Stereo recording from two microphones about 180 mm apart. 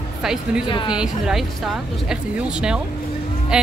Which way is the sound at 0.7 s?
25° left (ahead or behind).